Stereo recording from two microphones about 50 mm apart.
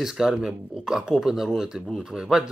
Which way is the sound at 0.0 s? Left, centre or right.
Centre.